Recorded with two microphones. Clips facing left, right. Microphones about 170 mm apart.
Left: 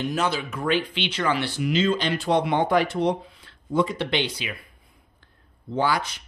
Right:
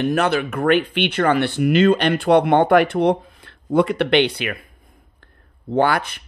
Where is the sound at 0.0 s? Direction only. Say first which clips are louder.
Right 7 dB; 60° right (ahead or behind).